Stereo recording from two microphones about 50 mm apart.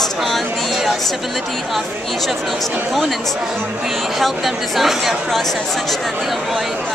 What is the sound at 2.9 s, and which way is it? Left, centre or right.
Speech, centre.